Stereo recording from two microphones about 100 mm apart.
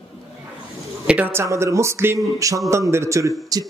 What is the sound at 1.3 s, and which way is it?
A man's voice, 25° right (ahead or behind).